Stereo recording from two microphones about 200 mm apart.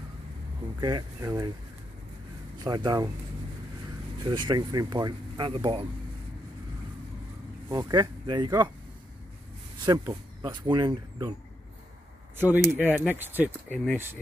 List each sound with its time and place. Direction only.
0.7 s speech: 20° right (ahead or behind)
2.6 s speech: 20° right (ahead or behind)
4.2 s speech: 20° right (ahead or behind)
7.7 s speech: 20° right (ahead or behind)
9.8 s speech: 15° right (ahead or behind)
12.4 s speech: 10° right (ahead or behind)